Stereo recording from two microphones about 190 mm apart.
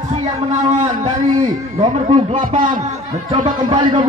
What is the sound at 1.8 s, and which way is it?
A man's voice, 25° right (ahead or behind).